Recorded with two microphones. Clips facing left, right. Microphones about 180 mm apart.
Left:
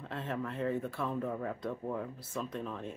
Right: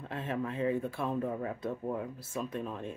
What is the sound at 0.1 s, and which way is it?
Speech, 10° right (ahead or behind).